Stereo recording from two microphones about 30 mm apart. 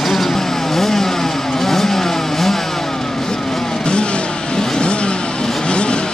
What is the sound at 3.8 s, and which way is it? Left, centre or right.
Vehicle, left.